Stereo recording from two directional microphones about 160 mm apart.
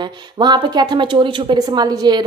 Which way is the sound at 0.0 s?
30° right (ahead or behind).